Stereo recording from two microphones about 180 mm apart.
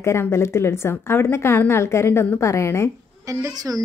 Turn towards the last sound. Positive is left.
turn(degrees=-20)  # may be behind; listen again after turning